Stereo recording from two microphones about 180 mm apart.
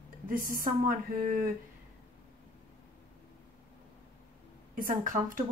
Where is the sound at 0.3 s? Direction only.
50° right (ahead or behind).